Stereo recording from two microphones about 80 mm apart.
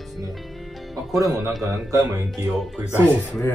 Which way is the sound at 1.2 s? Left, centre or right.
Right.